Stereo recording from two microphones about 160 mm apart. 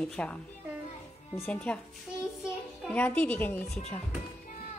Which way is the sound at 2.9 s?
10° left (ahead or behind).